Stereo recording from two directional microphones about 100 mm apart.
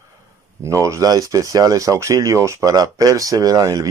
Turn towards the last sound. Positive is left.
turn(degrees=-35)  # may be behind; listen again after turning